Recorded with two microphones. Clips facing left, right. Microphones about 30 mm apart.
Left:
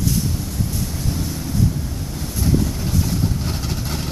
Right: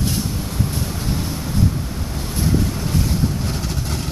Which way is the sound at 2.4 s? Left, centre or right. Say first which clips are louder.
Even; right.